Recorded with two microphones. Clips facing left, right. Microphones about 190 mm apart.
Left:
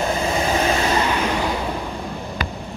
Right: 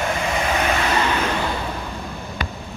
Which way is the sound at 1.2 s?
15° left (ahead or behind).